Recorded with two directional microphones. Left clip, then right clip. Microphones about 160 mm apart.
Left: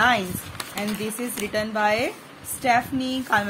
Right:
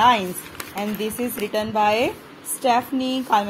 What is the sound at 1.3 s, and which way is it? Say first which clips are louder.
A woman's voice: right 2 dB; 10° right (ahead or behind).